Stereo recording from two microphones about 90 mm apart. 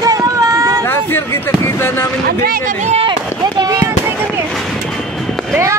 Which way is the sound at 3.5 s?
40° right (ahead or behind).